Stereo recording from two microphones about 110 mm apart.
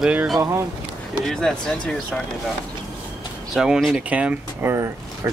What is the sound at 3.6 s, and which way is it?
Speech, centre (ahead or behind).